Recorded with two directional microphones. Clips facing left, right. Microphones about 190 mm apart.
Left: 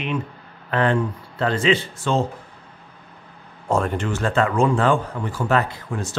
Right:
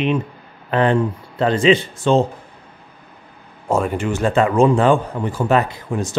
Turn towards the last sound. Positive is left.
turn(degrees=-15)  # may be behind; listen again after turning